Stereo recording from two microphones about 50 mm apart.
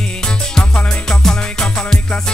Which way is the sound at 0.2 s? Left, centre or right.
Centre.